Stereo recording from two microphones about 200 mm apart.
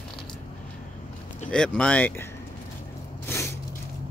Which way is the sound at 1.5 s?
5° left (ahead or behind).